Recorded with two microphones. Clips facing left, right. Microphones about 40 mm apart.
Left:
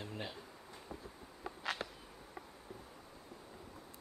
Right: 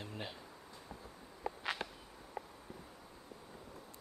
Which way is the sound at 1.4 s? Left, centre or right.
Centre.